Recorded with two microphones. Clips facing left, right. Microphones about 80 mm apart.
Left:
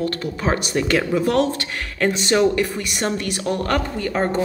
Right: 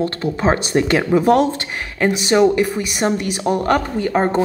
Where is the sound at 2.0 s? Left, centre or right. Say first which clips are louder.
Right 3 dB; centre.